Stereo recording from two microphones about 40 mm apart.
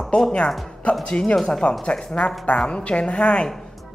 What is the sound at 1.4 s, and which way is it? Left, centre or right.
Speech, centre.